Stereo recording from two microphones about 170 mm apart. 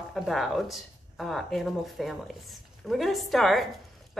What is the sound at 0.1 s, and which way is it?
A woman's voice, centre (ahead or behind).